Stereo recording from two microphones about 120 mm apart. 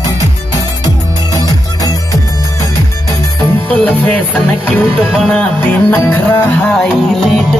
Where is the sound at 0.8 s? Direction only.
30° left (ahead or behind).